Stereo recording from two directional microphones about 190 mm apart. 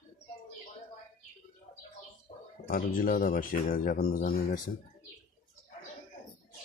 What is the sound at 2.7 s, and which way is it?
Speech, 50° left (ahead or behind).